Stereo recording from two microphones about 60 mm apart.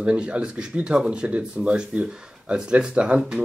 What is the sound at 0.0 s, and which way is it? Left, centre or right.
Speech, centre.